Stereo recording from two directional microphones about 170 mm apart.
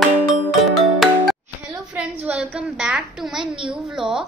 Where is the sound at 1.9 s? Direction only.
5° right (ahead or behind).